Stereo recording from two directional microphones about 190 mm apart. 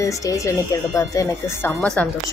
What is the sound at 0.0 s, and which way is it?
Speech, 15° left (ahead or behind).